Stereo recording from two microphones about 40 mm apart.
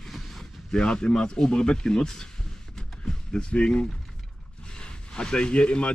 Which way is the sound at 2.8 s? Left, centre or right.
Left.